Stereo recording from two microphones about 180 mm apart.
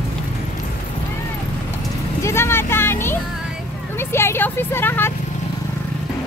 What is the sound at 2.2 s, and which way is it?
Speech, 15° left (ahead or behind).